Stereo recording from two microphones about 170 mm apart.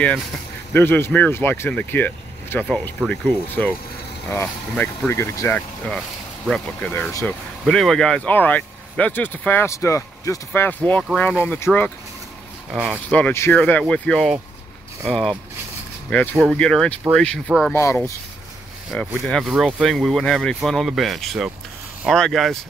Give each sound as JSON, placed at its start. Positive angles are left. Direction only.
{"t": 0.7, "sound": "speech", "side_deg": 10}
{"t": 5.9, "sound": "speech", "side_deg": 0}
{"t": 12.7, "sound": "speech", "side_deg": -5}
{"t": 13.1, "sound": "speech", "side_deg": 10}
{"t": 17.7, "sound": "speech", "side_deg": 15}
{"t": 18.9, "sound": "speech", "side_deg": 5}